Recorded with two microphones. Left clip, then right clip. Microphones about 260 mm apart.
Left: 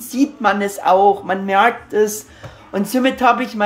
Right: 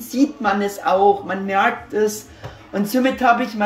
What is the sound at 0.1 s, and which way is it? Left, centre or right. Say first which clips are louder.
Speech: left 2 dB; centre.